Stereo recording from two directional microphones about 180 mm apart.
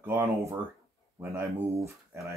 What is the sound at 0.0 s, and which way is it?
Speech, 15° right (ahead or behind).